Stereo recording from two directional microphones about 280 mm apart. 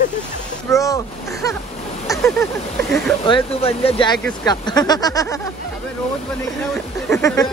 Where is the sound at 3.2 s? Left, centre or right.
Centre.